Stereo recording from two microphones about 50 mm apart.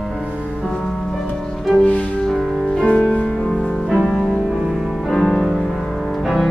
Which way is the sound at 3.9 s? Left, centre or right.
Centre.